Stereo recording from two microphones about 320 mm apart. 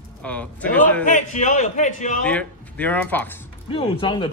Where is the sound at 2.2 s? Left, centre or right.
Centre.